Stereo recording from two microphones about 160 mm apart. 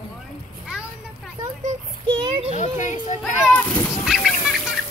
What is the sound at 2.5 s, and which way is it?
Speech, 45° left (ahead or behind).